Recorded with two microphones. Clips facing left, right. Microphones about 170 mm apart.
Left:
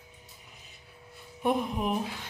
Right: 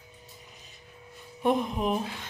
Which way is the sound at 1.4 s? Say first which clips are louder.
Right 2 dB; 10° left (ahead or behind).